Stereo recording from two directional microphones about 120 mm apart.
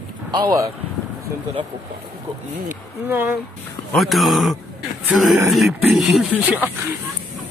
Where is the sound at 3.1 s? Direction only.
15° right (ahead or behind).